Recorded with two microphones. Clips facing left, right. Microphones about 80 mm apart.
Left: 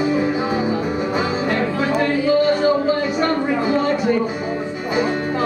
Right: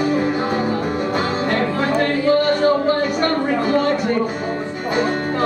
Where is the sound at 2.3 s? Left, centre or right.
Right.